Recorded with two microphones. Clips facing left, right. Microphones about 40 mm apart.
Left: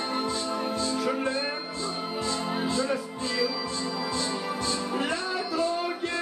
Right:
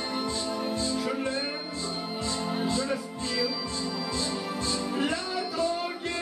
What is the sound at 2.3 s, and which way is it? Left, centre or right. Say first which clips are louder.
Music: even; left.